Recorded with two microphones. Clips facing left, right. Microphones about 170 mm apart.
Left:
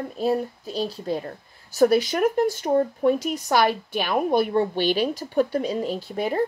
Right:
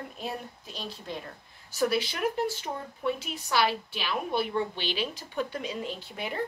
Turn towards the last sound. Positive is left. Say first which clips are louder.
# left 10 dB
turn(degrees=40)  # may be behind; listen again after turning